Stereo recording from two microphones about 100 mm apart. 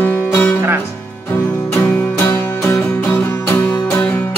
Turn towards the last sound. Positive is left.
turn(degrees=25)  # may be behind; listen again after turning